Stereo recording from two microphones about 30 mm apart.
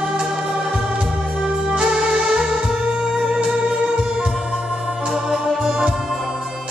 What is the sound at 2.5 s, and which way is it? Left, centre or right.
Music, centre.